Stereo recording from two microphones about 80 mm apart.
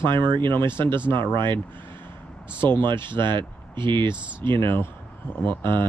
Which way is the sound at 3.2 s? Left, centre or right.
Right.